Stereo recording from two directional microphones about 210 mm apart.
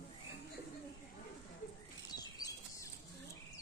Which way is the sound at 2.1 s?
20° left (ahead or behind).